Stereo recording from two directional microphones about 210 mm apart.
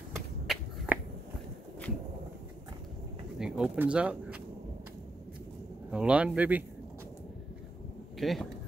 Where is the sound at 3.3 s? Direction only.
5° right (ahead or behind).